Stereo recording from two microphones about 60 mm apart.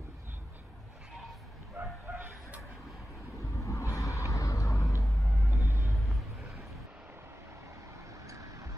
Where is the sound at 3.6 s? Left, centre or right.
Left.